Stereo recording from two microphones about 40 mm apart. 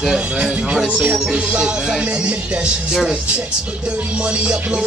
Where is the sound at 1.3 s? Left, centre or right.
Right.